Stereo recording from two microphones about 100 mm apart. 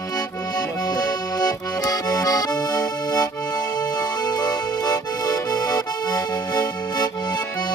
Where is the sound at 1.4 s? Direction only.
35° left (ahead or behind).